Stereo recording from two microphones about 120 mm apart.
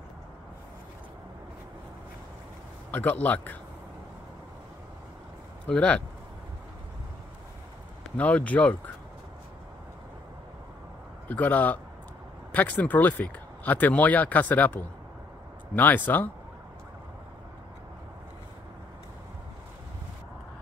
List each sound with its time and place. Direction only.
2.9 s speech: 15° left (ahead or behind)
5.7 s speech: 10° left (ahead or behind)
8.2 s speech: 10° left (ahead or behind)
11.2 s speech: 15° left (ahead or behind)